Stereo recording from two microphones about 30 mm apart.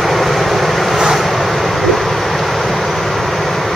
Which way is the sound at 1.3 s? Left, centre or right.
Centre.